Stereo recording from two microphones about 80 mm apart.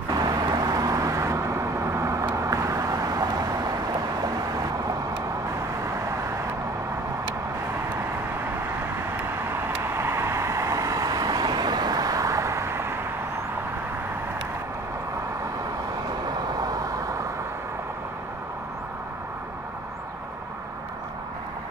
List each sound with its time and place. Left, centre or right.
0.1 s vehicle: right
9.9 s vehicle: right